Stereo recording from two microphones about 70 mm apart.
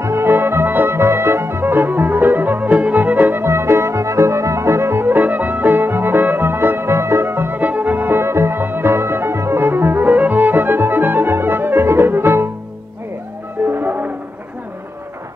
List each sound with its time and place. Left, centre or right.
0.0 s music: right
3.4 s music: right
13.7 s music: right